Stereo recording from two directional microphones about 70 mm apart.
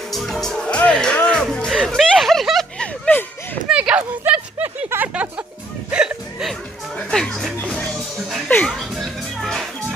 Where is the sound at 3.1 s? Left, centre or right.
Left.